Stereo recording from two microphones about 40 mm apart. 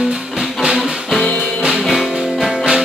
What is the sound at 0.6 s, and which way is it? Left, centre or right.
Music, centre.